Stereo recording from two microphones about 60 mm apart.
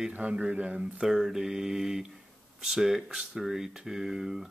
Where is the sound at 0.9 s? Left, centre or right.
Centre.